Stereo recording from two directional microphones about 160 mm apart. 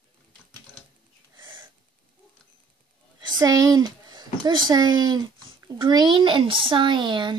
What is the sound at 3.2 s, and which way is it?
Speech, 25° right (ahead or behind).